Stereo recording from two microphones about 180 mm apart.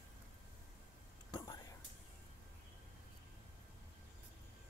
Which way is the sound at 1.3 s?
25° left (ahead or behind).